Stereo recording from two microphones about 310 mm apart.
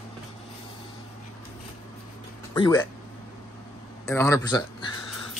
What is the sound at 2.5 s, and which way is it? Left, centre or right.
Speech, centre.